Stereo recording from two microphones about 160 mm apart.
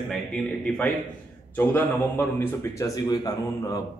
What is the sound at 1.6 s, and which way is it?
Speech, 10° left (ahead or behind).